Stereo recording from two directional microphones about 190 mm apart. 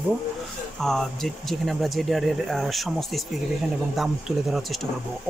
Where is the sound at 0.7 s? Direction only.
Centre (ahead or behind).